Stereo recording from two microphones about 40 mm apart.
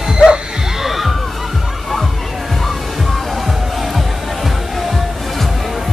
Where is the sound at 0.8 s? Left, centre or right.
Centre.